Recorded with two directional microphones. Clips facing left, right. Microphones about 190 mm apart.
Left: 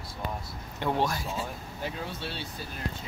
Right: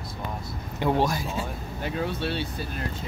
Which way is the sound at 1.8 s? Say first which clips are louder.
Right 7 dB; 65° right (ahead or behind).